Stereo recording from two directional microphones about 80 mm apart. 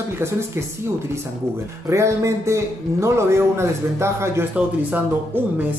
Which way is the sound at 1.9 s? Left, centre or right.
Right.